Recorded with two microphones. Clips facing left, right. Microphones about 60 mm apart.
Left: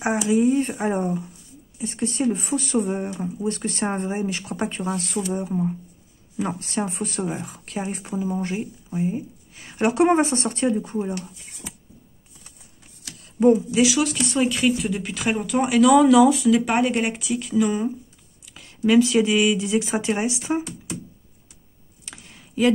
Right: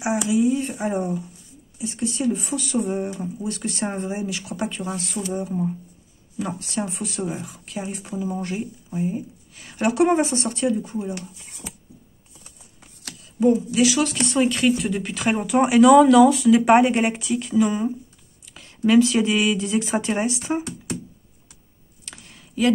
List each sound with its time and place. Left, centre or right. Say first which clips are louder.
0.0 s speech: left 1 dB; left
2.9 s speech: right 1 dB; centre
3.4 s speech: left 3 dB; left
5.4 s speech: left 1 dB; centre
6.3 s speech: left 1 dB; left
8.0 s speech: left 1 dB; left
13.8 s speech: right 1 dB; centre
15.4 s speech: right 3 dB; centre
16.6 s speech: right 5 dB; centre
18.4 s a sound: even; centre
18.9 s speech: even; centre
22.1 s a sound: left 2 dB; centre